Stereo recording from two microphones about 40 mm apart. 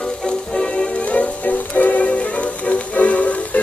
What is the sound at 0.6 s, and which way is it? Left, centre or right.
Music, left.